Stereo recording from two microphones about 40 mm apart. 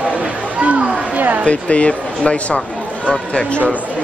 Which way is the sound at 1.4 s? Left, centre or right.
Left.